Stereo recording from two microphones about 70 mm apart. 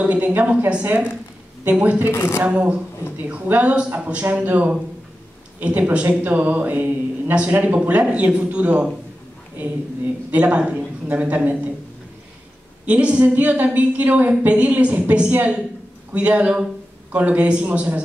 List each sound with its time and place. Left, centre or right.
0.0 s a man's voice: right
2.0 s speech: left
2.4 s a man's voice: centre
10.3 s a man's voice: centre
12.8 s a man's voice: centre